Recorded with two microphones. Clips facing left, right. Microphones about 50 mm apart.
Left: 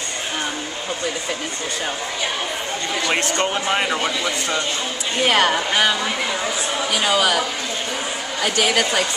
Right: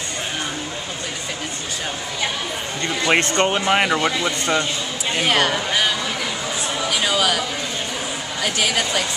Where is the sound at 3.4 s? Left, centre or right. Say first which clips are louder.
Right 3 dB; right.